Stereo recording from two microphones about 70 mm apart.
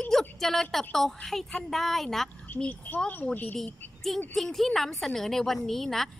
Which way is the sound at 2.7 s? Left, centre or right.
Left.